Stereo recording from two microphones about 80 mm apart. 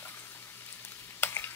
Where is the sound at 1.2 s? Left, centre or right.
Left.